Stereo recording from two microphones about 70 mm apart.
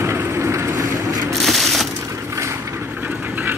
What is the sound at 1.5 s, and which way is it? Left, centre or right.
Crushing, centre.